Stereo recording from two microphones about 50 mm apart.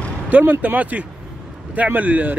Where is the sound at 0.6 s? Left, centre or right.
Right.